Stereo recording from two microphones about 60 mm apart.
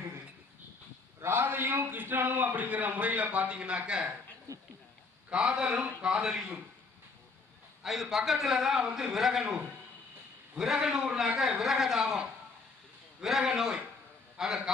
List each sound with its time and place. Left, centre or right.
1.2 s a man's voice: right; by 4.2 s centre
4.5 s speech: right
5.3 s a man's voice: centre
7.8 s a man's voice: centre
14.3 s a sound: centre